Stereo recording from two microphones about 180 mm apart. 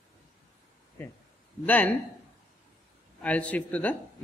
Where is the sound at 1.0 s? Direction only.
10° left (ahead or behind).